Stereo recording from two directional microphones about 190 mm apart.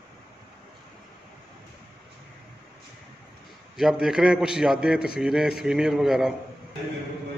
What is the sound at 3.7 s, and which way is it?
A man's voice, 5° right (ahead or behind).